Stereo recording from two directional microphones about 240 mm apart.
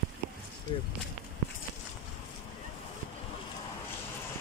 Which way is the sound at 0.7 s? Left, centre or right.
Left.